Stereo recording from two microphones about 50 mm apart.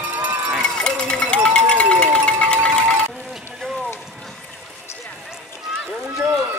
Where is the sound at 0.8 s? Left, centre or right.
Centre.